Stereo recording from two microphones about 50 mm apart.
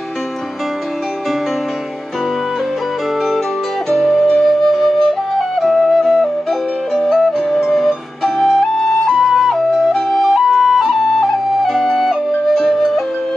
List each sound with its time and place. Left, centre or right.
4.1 s flute: centre
7.1 s music: centre
7.6 s flute: centre
12.6 s music: centre